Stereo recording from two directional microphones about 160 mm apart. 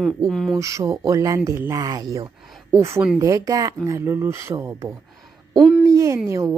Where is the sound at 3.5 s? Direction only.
20° right (ahead or behind).